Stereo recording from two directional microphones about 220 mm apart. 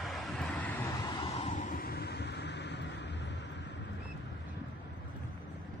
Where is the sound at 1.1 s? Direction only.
30° left (ahead or behind); by 3.7 s 50° left (ahead or behind).